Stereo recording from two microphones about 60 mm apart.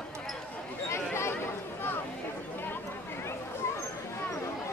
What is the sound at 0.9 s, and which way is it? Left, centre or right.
Chatter, left.